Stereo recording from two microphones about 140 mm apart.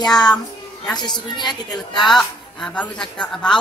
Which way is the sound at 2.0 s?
Centre (ahead or behind).